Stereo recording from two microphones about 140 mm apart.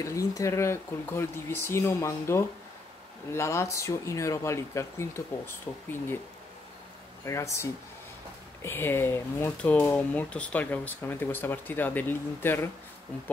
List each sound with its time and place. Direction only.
0.0 s speech: 25° left (ahead or behind)
7.2 s speech: 20° left (ahead or behind)